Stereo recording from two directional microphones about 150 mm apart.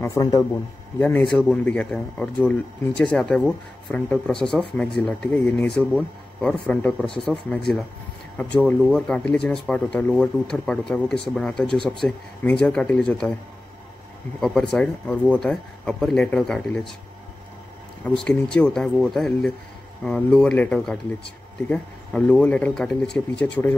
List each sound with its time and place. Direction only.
0.0 s speech: 20° left (ahead or behind)
0.9 s speech: 10° left (ahead or behind)
14.4 s speech: 5° left (ahead or behind)
18.0 s speech: 5° left (ahead or behind)